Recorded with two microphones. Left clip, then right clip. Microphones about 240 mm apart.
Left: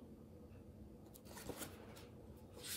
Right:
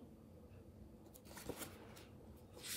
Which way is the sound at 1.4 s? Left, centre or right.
Centre.